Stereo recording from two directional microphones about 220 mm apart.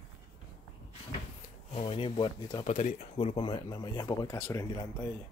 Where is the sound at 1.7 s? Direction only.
25° left (ahead or behind).